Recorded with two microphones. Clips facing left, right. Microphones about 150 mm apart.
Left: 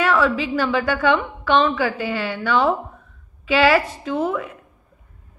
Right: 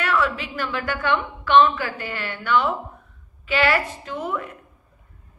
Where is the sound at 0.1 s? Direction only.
90° left.